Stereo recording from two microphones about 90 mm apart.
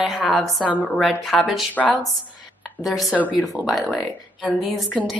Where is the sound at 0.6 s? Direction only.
15° left (ahead or behind).